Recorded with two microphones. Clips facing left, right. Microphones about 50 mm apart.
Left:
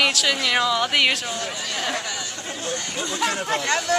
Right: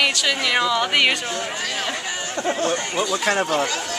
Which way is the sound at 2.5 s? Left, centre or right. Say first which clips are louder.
Right 9 dB; right.